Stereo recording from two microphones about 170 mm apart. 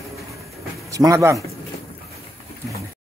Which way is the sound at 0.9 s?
20° right (ahead or behind).